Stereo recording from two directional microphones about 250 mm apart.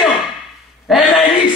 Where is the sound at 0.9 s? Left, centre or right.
Centre.